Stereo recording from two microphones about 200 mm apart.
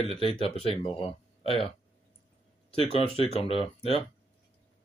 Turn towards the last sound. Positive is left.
turn(degrees=30)  # may be behind; listen again after turning